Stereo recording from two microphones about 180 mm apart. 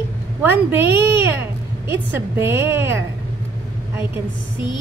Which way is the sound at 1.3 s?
10° right (ahead or behind).